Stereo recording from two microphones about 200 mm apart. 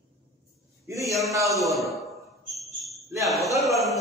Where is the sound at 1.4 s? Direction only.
Centre (ahead or behind).